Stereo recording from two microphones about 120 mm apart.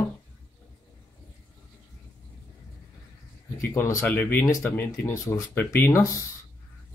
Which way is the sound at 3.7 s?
15° left (ahead or behind).